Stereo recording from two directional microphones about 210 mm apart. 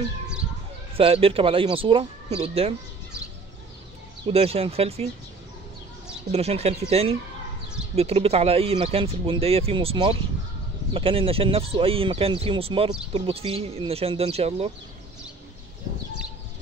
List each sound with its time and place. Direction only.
0.9 s speech: 25° right (ahead or behind)
4.3 s speech: 30° right (ahead or behind)
6.3 s speech: 30° right (ahead or behind)